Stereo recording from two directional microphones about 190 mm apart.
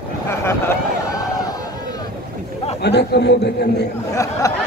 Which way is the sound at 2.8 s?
60° left (ahead or behind).